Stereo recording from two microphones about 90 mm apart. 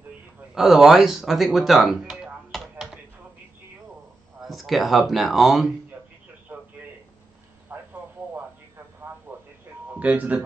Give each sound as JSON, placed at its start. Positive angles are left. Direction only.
{"t": 0.6, "sound": "speech", "side_deg": -5}
{"t": 4.4, "sound": "speech", "side_deg": 0}
{"t": 7.7, "sound": "a sound", "side_deg": -25}
{"t": 9.9, "sound": "speech", "side_deg": -15}